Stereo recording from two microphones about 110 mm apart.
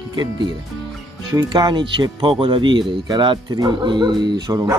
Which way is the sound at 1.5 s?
40° right (ahead or behind).